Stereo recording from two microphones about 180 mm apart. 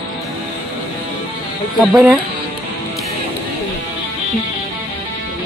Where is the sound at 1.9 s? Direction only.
10° right (ahead or behind).